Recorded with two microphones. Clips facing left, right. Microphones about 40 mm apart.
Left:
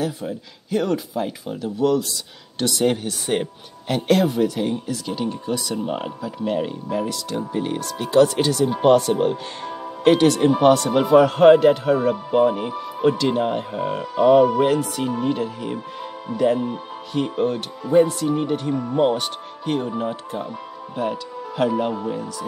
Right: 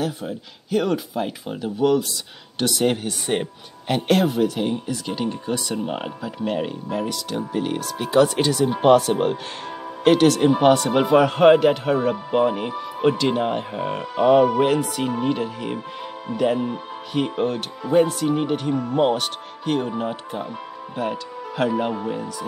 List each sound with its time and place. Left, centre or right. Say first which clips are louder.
0.7 s speech: even; centre
18.6 s speech: even; centre